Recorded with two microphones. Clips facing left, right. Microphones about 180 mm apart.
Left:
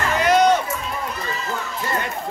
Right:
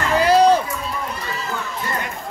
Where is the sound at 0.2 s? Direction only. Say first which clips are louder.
Right 2 dB; 30° right (ahead or behind).